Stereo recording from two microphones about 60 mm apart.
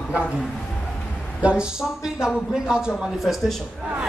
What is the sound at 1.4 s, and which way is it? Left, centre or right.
A man's voice, centre.